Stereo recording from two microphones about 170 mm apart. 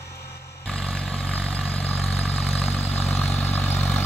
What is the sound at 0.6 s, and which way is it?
Vehicle, centre (ahead or behind).